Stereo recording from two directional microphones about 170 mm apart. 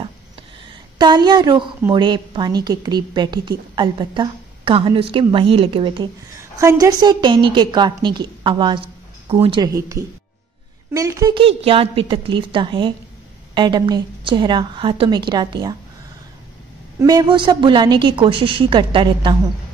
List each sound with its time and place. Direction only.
0.9 s a woman's voice: 25° right (ahead or behind)
6.6 s a woman's voice: 20° right (ahead or behind)
9.6 s a woman's voice: 20° right (ahead or behind)
11.3 s a woman's voice: 35° right (ahead or behind)
17.0 s a woman's voice: 25° right (ahead or behind)